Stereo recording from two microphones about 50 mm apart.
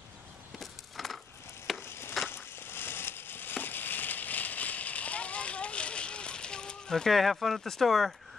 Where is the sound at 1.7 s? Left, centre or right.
Left; by 8.1 s centre.